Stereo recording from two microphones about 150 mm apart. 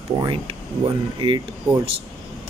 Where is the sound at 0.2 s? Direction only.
35° right (ahead or behind).